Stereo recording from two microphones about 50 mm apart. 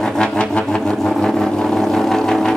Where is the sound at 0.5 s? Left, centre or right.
Centre.